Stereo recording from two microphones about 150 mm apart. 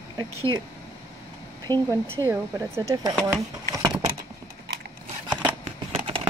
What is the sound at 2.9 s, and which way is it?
Speech, 25° right (ahead or behind).